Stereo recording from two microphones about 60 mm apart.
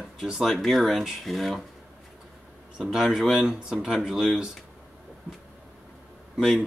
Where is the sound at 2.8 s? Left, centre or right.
Centre.